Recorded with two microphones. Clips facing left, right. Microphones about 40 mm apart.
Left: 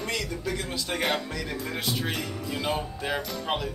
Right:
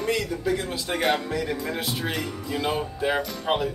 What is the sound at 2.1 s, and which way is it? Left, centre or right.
Music, centre.